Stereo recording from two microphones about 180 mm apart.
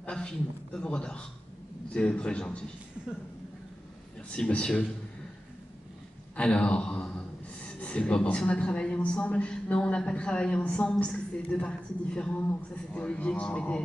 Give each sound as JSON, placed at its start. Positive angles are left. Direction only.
{"t": 0.0, "sound": "a sound", "side_deg": 5}
{"t": 0.7, "sound": "a man's voice", "side_deg": 5}
{"t": 4.3, "sound": "a man's voice", "side_deg": 5}
{"t": 6.3, "sound": "a man's voice", "side_deg": 5}